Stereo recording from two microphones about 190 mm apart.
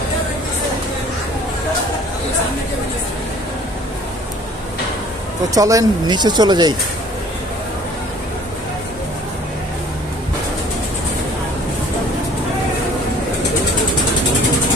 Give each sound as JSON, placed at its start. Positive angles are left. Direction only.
{"t": 5.5, "sound": "speech", "side_deg": -20}